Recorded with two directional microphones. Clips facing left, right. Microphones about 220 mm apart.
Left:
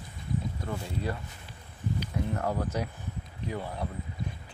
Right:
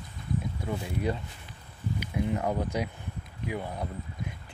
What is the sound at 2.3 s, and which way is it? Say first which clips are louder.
Speech: right 2 dB; 15° right (ahead or behind).